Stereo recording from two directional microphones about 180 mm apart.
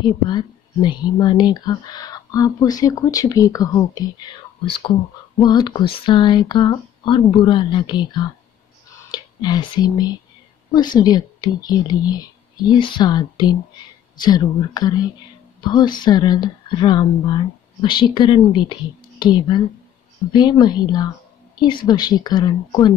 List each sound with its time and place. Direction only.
0.0 s speech: 25° left (ahead or behind)
5.4 s speech: 25° left (ahead or behind)